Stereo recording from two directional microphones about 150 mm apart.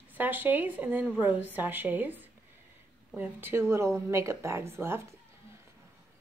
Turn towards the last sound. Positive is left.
turn(degrees=-15)  # may be behind; listen again after turning